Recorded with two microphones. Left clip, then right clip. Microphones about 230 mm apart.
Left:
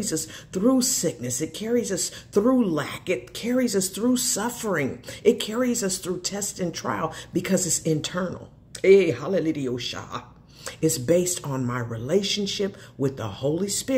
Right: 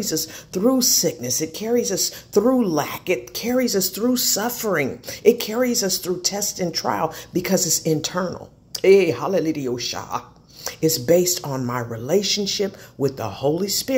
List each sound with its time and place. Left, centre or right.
0.0 s speech: centre
2.7 s speech: right
3.1 s speech: centre
8.7 s a sound: right
9.1 s speech: right
10.6 s speech: centre